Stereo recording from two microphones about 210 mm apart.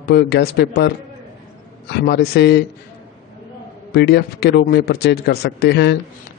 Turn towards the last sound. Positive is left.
turn(degrees=55)  # may be behind; listen again after turning